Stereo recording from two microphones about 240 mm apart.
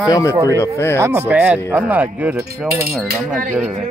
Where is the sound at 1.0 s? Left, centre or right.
Centre.